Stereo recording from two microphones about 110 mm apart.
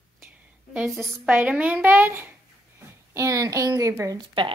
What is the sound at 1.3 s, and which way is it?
A woman's voice, 15° right (ahead or behind).